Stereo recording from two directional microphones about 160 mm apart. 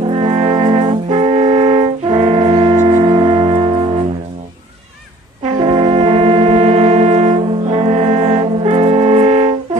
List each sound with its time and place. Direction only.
0.0 s brass instrument: 40° right (ahead or behind)
1.1 s brass instrument: 45° right (ahead or behind)
2.7 s a sound: 45° right (ahead or behind)
3.3 s music: 40° right (ahead or behind)
5.4 s brass instrument: 40° right (ahead or behind)